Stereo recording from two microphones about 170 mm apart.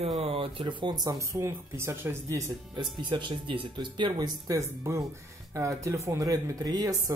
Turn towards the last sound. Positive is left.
turn(degrees=-20)  # may be behind; listen again after turning